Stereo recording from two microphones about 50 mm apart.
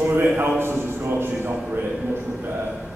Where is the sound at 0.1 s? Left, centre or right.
Right.